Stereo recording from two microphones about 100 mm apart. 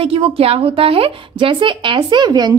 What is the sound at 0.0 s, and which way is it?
A woman's voice, 70° right (ahead or behind).